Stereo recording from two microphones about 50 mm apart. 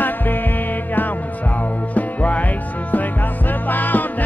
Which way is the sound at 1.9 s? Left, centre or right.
Left.